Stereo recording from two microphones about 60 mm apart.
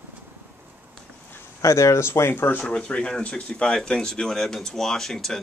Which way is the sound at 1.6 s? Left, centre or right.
Left.